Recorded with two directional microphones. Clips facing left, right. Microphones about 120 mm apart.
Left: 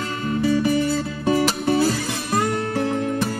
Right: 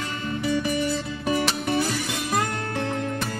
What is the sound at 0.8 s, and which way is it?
Music, 30° left (ahead or behind).